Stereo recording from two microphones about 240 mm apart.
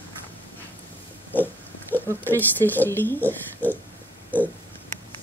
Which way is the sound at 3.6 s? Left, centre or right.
Centre.